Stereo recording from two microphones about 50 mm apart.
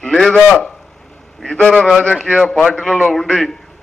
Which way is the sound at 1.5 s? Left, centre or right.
Left.